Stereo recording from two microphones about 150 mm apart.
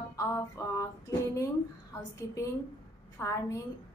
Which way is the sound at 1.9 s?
20° left (ahead or behind).